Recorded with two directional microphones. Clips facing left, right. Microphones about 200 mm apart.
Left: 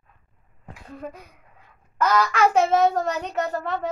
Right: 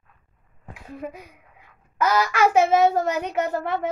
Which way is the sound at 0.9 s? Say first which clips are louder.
Right 2 dB; 5° right (ahead or behind).